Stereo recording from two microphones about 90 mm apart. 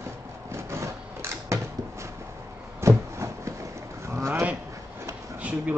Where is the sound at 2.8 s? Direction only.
30° right (ahead or behind).